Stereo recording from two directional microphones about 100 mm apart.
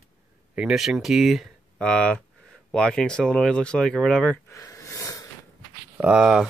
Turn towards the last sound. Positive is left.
turn(degrees=-10)  # may be behind; listen again after turning